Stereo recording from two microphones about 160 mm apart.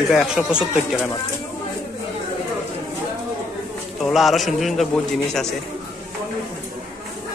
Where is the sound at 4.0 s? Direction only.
Centre (ahead or behind).